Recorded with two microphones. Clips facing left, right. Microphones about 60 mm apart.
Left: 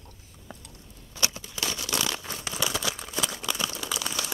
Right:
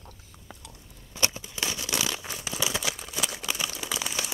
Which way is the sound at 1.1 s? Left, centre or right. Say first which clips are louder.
Right 2 dB; right.